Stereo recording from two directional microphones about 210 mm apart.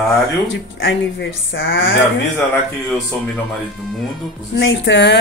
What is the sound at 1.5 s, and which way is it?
Speech, 65° left (ahead or behind).